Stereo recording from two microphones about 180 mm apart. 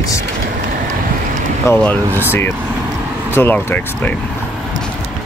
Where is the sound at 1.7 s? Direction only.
10° left (ahead or behind).